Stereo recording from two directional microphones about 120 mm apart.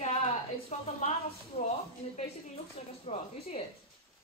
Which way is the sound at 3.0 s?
60° left (ahead or behind).